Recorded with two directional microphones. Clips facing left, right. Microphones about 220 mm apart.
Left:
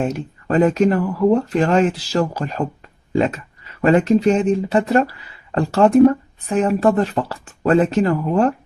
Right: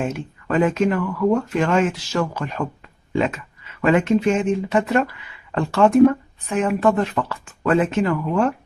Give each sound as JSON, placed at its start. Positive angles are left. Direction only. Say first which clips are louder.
{"t": 0.0, "sound": "speech", "louder": "left 3 dB", "side_deg": 40}